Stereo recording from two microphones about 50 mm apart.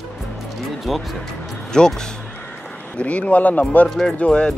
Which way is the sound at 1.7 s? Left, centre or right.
Centre.